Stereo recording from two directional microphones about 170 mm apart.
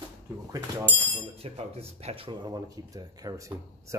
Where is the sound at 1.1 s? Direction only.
35° right (ahead or behind).